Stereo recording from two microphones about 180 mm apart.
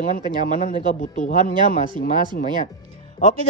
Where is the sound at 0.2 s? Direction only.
25° right (ahead or behind).